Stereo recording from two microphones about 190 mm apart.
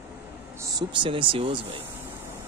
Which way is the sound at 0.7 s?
25° right (ahead or behind).